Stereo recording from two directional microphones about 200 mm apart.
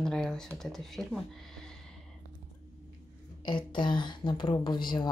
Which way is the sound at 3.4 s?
25° left (ahead or behind).